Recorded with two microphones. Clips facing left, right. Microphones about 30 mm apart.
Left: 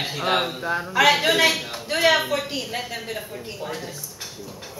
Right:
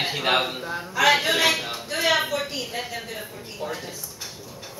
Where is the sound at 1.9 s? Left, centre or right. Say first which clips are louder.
Left 4 dB; left.